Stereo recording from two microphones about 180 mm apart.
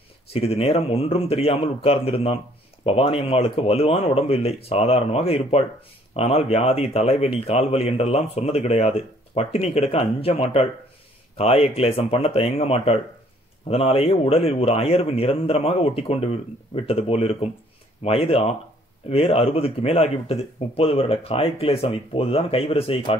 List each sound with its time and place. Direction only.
0.3 s a man's voice: 35° left (ahead or behind)